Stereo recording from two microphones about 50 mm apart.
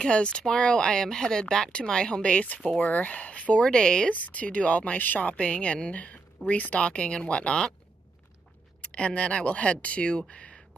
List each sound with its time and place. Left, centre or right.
0.0 s speech: left
2.9 s speech: left
4.1 s speech: left
8.8 s speech: left